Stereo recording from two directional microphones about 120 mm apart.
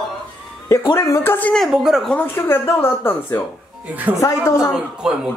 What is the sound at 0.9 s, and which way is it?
Speech, 20° left (ahead or behind).